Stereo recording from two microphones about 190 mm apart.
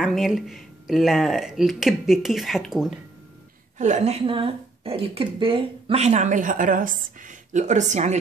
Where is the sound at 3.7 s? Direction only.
40° right (ahead or behind).